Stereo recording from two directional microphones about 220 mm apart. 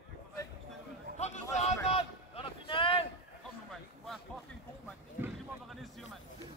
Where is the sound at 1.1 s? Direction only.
30° left (ahead or behind).